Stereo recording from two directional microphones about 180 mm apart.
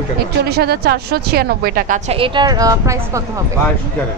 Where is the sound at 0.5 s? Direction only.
60° right (ahead or behind); by 3.0 s 20° right (ahead or behind).